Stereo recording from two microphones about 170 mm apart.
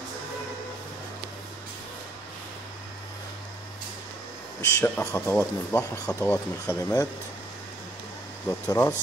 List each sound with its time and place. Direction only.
4.6 s speech: 15° left (ahead or behind)
8.5 s speech: 15° left (ahead or behind)